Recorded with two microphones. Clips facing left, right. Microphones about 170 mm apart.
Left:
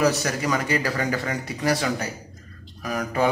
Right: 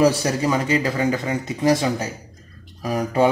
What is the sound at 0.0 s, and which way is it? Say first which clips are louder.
Speech: right 4 dB; 30° right (ahead or behind).